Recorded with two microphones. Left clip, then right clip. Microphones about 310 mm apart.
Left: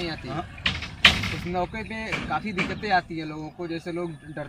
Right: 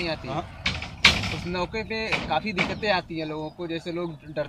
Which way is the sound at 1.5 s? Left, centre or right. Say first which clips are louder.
Right 1 dB; centre.